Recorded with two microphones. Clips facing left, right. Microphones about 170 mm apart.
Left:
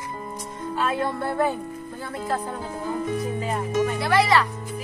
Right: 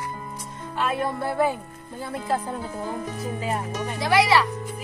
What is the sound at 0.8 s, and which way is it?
Speech, 5° right (ahead or behind).